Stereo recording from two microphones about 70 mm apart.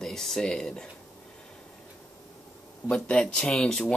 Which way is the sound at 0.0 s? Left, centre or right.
Centre.